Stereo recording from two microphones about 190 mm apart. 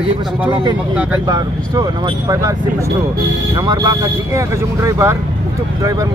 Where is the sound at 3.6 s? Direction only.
20° right (ahead or behind).